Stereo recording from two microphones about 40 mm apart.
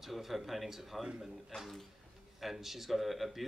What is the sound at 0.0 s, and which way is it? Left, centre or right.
Speech, centre.